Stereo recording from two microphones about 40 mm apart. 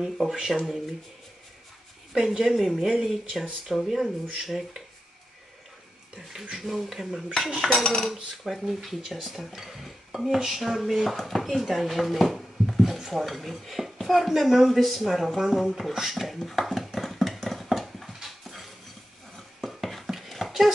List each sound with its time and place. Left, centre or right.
0.0 s speech: centre
2.1 s speech: centre
6.1 s speech: centre
7.7 s cutlery: centre
8.5 s speech: centre
15.7 s a sound: centre